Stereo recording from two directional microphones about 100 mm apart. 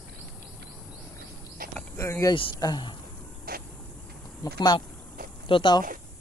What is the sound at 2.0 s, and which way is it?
Speech, 30° left (ahead or behind).